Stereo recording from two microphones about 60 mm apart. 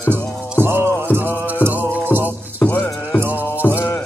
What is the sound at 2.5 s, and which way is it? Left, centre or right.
Music, left.